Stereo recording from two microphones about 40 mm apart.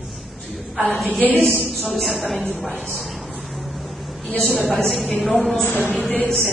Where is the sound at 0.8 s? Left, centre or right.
Centre.